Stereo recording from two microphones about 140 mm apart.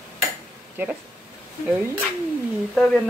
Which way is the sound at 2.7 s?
5° left (ahead or behind).